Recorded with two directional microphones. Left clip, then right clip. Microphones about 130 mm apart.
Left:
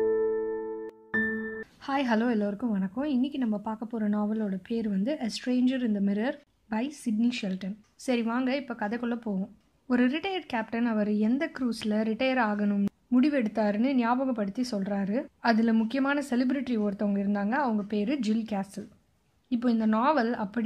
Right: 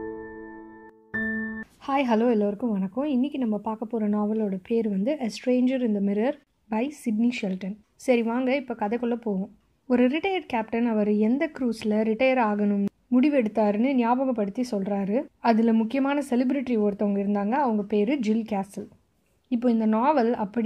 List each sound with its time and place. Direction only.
1.9 s a woman's voice: 30° right (ahead or behind)